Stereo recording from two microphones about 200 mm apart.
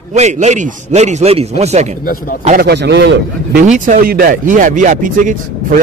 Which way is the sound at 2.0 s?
45° left (ahead or behind).